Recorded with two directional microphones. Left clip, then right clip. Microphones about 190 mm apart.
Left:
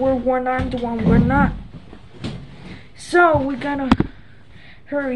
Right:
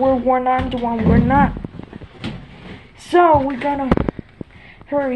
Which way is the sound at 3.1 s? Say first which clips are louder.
Right 2 dB; 10° left (ahead or behind).